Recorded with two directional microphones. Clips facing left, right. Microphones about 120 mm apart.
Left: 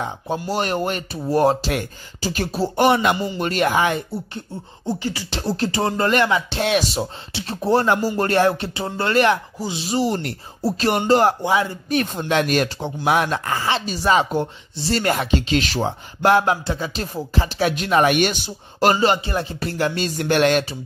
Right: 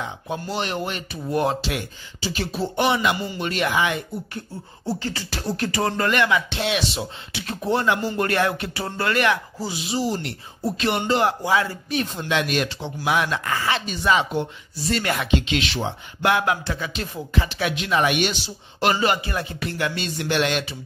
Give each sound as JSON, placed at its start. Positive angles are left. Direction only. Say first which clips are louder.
{"t": 0.0, "sound": "speech", "louder": "left 4 dB", "side_deg": 40}
{"t": 4.8, "sound": "beatboxing", "louder": "left 2 dB", "side_deg": 15}
{"t": 5.4, "sound": "a man's voice", "louder": "left 2 dB", "side_deg": 30}
{"t": 9.9, "sound": "speech", "louder": "left 4 dB", "side_deg": 65}
{"t": 10.6, "sound": "a man's voice", "louder": "left 3 dB", "side_deg": 40}
{"t": 11.4, "sound": "speech", "louder": "left 2 dB", "side_deg": 20}
{"t": 11.9, "sound": "a man's voice", "louder": "left 5 dB", "side_deg": 50}